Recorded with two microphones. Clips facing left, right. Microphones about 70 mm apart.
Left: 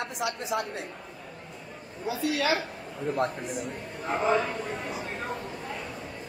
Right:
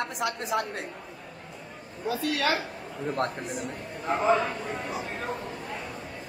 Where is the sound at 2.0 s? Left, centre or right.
Right.